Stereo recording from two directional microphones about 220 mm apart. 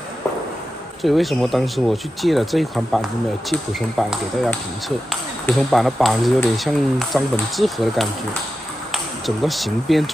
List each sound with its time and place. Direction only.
1.0 s speech: centre (ahead or behind)